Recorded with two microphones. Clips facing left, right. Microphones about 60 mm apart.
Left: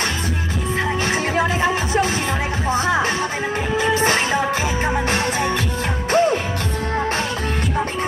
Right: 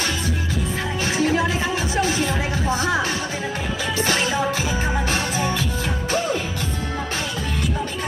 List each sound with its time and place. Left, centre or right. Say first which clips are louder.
1.1 s music: right 3 dB; left